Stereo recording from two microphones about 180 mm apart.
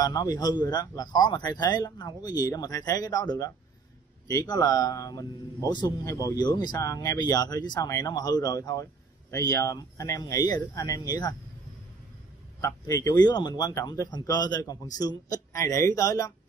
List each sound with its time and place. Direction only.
0.0 s a man's voice: 20° left (ahead or behind)
12.5 s a man's voice: 20° left (ahead or behind)